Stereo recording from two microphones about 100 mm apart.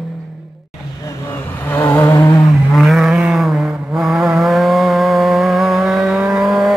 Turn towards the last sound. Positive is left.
turn(degrees=0)  # may be behind; listen again after turning